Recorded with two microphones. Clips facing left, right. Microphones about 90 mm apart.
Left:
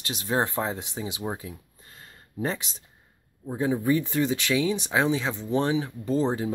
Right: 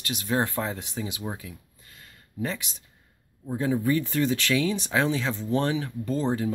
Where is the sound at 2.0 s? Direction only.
30° left (ahead or behind).